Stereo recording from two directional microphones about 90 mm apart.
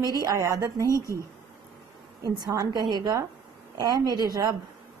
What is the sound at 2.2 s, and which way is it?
A woman's voice, 40° right (ahead or behind).